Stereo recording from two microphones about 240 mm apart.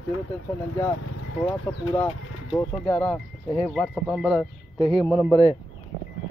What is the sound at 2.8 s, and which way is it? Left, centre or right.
Speech, centre.